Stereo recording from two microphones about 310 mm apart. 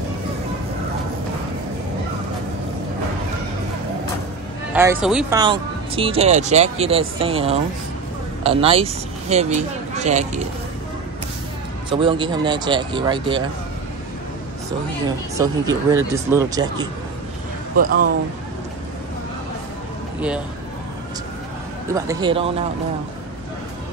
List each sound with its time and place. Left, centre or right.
4.7 s speech: centre
5.4 s speech: centre
11.9 s speech: centre
15.3 s speech: centre
17.7 s speech: right
21.8 s speech: centre